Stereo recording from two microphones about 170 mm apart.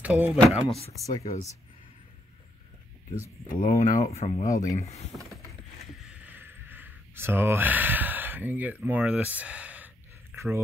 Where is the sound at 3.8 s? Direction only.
45° left (ahead or behind).